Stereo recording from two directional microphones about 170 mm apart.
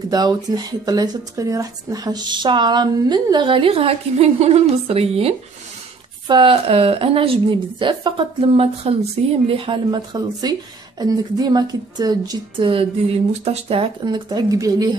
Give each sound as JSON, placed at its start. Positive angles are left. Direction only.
{"t": 0.1, "sound": "a woman's voice", "side_deg": -25}